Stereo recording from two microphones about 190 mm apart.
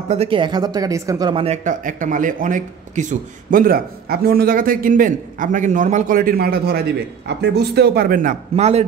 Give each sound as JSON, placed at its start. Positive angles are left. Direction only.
{"t": 0.1, "sound": "speech", "side_deg": -30}